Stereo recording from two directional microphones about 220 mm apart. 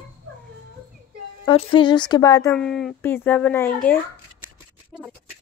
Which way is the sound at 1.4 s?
25° left (ahead or behind).